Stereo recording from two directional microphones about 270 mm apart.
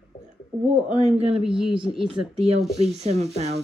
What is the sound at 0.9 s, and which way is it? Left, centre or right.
Speech, right.